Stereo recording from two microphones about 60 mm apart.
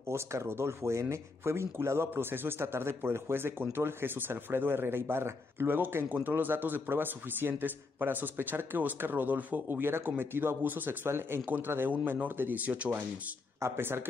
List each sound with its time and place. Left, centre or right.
0.1 s speech: right
11.1 s speech: right
13.6 s speech: right